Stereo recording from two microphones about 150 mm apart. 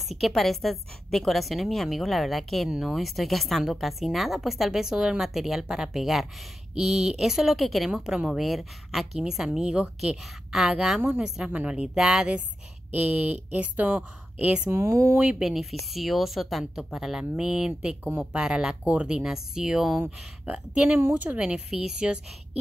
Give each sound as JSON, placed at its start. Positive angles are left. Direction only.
{"t": 0.2, "sound": "a woman's voice", "side_deg": 0}
{"t": 15.1, "sound": "a woman's voice", "side_deg": -5}